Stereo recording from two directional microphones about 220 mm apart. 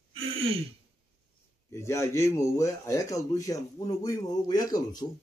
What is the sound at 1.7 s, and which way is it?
Speech, 10° left (ahead or behind).